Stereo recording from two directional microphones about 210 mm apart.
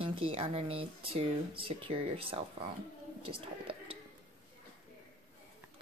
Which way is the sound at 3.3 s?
25° right (ahead or behind).